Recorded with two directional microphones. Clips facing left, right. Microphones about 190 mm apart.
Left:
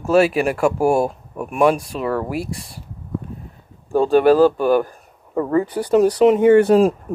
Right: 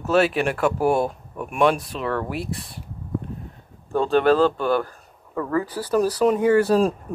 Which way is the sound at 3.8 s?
15° left (ahead or behind).